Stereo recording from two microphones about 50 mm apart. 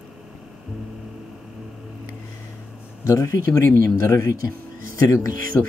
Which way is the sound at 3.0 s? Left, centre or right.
Left.